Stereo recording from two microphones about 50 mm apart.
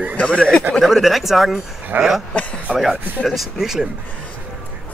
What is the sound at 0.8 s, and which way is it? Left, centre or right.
Speech, centre.